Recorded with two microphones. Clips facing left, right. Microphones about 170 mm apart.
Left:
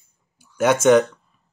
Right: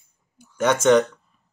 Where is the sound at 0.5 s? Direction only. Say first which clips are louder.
Left 2 dB; 10° left (ahead or behind).